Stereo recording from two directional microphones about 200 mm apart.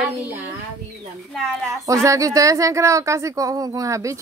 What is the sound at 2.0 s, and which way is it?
A child's voice, 15° right (ahead or behind).